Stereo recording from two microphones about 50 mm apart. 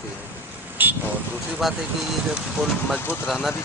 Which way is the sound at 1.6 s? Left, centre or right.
Centre.